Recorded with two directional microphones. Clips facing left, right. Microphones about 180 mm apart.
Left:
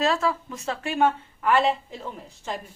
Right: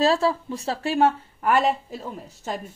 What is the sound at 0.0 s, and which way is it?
A woman's voice, 30° right (ahead or behind).